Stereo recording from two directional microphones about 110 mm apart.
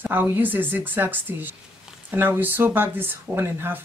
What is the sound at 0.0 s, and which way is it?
Speech, 20° right (ahead or behind).